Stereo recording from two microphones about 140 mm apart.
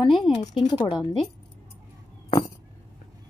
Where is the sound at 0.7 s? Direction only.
30° left (ahead or behind).